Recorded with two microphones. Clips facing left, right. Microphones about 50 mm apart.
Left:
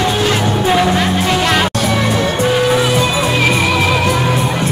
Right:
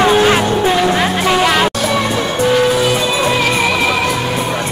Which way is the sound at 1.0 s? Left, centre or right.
Centre.